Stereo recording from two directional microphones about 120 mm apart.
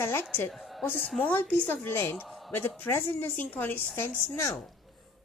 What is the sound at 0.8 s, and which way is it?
A woman's voice, 15° left (ahead or behind).